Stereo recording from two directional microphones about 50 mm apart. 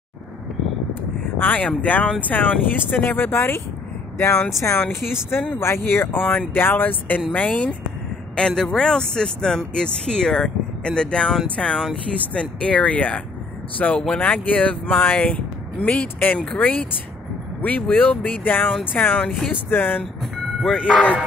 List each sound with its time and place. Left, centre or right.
1.4 s speech: left
4.7 s speech: left
8.4 s speech: centre; by 20.0 s left
20.7 s speech: left